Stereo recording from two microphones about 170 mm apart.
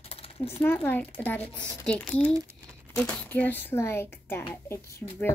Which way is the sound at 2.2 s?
15° right (ahead or behind).